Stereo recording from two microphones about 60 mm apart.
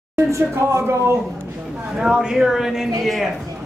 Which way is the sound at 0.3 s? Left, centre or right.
Right.